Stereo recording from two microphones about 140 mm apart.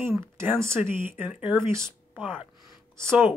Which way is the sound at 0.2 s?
20° right (ahead or behind).